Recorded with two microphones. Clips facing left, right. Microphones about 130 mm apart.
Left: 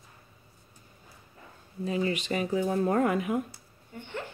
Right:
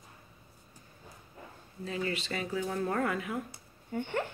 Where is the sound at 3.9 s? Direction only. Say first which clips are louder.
Right 6 dB; 55° right (ahead or behind).